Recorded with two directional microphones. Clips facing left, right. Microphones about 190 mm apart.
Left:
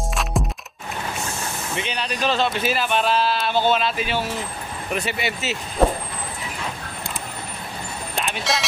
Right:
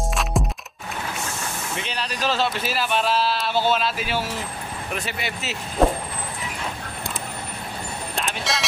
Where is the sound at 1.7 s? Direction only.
Centre (ahead or behind).